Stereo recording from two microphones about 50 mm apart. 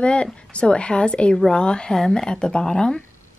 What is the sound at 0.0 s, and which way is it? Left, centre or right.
Speech, left.